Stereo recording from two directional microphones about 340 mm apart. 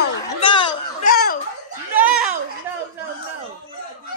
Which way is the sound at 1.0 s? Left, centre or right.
Left.